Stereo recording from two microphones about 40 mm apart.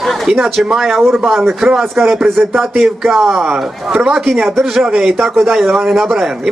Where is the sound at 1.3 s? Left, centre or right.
Centre.